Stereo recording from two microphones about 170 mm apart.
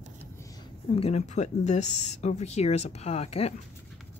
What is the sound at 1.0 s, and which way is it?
Speech, 40° left (ahead or behind).